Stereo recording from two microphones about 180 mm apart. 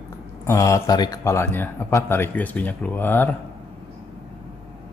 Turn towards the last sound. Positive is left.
turn(degrees=10)  # may be behind; listen again after turning